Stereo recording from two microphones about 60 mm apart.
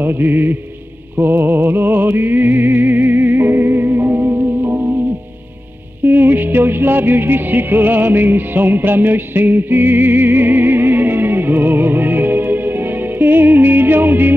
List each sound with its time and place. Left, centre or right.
0.0 s mantra: right
1.1 s music: right
6.0 s music: right